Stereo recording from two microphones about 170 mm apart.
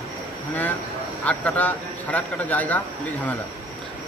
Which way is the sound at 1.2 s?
10° left (ahead or behind).